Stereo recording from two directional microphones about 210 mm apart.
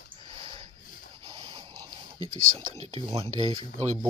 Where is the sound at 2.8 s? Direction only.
30° right (ahead or behind).